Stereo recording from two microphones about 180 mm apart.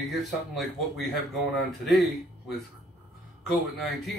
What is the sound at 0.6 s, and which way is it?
Speech, centre (ahead or behind).